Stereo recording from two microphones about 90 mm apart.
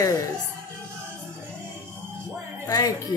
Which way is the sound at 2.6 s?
45° left (ahead or behind).